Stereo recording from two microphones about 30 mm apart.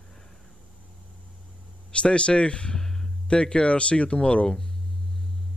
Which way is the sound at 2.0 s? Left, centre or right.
Left.